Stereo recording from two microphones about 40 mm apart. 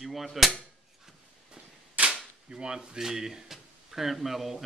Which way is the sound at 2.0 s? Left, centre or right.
Right.